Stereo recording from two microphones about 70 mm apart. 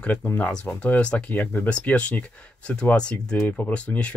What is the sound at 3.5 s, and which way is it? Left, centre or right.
Speech, left.